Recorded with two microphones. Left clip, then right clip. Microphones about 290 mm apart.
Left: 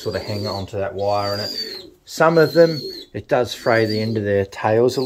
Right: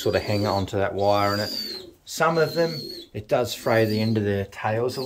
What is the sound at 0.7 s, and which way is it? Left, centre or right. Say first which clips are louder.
Speech: left 3 dB; right.